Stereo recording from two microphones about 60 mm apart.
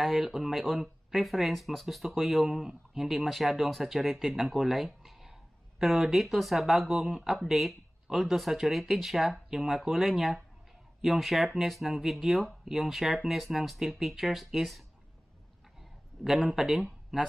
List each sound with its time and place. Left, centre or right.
0.0 s speech: centre
16.5 s speech: centre